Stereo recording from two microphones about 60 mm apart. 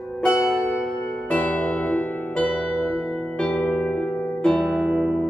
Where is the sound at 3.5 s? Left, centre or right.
Centre.